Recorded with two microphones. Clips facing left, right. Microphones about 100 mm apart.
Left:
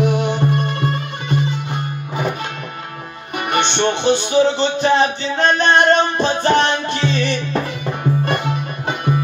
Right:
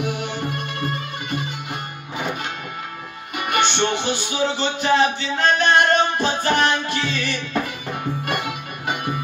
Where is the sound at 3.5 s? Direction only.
30° left (ahead or behind).